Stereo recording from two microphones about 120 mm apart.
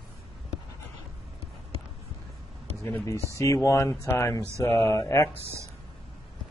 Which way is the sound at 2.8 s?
20° left (ahead or behind).